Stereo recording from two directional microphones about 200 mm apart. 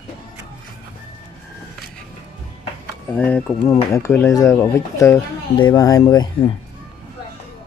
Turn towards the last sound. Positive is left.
turn(degrees=20)  # may be behind; listen again after turning